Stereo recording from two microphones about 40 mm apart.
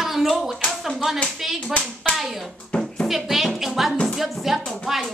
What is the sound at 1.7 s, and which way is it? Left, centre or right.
Speech, left.